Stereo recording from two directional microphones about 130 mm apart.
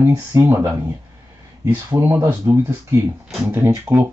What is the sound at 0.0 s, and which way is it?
Speech, 20° right (ahead or behind).